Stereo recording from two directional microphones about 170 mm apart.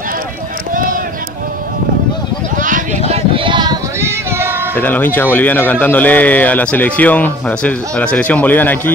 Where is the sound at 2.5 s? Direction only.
50° right (ahead or behind).